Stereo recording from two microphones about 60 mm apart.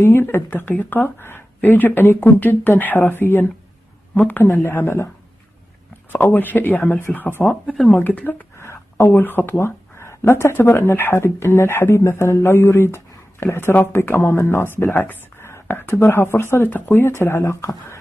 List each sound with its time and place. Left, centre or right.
0.0 s speech: left
4.6 s speech: left
6.3 s speech: left
7.6 s speech: centre
7.9 s speech: left
8.5 s a sound: left
9.1 s speech: left